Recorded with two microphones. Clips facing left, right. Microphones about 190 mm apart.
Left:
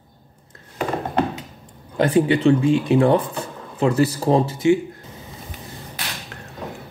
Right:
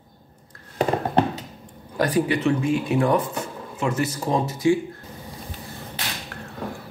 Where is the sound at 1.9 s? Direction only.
25° left (ahead or behind).